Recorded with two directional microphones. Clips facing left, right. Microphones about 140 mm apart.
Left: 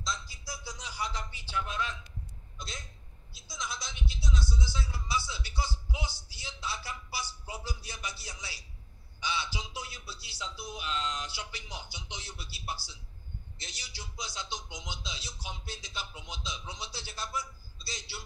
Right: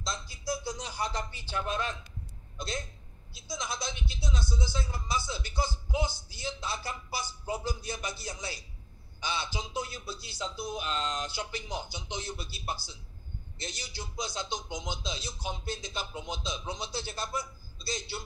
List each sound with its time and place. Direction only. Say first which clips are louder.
0.0 s a man's voice: right 2 dB; 55° right (ahead or behind)
3.4 s speech: right 5 dB; 55° right (ahead or behind)